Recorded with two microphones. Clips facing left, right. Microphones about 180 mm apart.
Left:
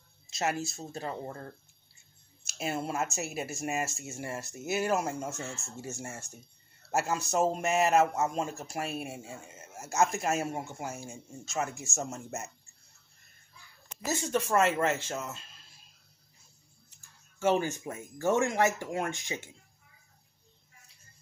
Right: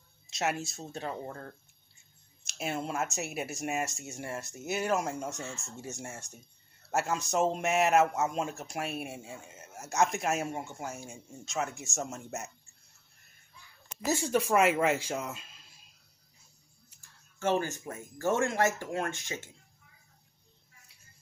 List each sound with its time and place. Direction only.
0.3 s speech: centre (ahead or behind)
14.0 s speech: 10° right (ahead or behind)
17.4 s speech: 15° left (ahead or behind)